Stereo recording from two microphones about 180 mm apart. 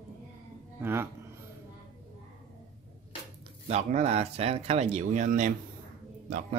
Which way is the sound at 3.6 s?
40° right (ahead or behind).